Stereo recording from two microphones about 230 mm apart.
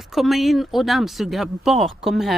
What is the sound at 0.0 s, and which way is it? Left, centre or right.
Speech, centre.